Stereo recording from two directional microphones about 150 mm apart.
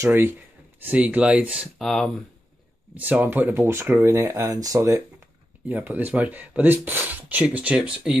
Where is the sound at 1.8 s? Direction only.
Centre (ahead or behind).